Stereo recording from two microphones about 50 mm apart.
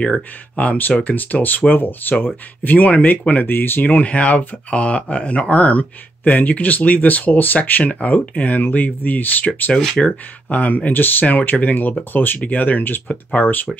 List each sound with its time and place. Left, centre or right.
0.0 s speech: left
4.6 s speech: left